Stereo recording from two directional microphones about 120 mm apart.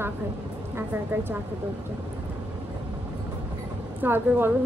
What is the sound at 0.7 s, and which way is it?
Speech, 15° right (ahead or behind).